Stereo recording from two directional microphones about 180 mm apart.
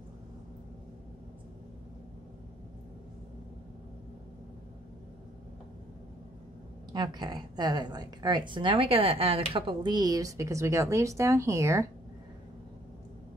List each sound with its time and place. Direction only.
6.9 s a woman's voice: 25° right (ahead or behind)